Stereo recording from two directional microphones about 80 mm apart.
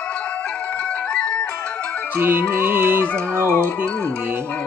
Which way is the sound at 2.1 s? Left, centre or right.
Right.